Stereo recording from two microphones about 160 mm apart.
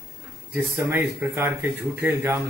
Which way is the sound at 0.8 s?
15° right (ahead or behind).